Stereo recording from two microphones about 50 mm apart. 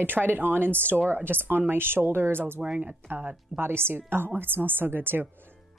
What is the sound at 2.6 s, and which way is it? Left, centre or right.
Speech, right.